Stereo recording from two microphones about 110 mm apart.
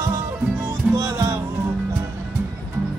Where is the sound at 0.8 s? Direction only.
10° right (ahead or behind).